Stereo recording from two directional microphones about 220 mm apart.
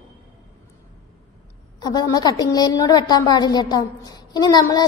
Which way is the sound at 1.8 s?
20° left (ahead or behind).